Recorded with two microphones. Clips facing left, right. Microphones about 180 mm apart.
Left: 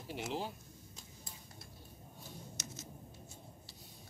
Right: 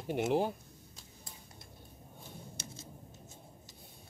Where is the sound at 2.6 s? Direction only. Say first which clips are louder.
Even; 30° right (ahead or behind).